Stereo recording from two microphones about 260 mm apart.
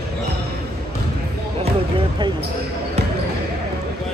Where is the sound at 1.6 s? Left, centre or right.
Centre.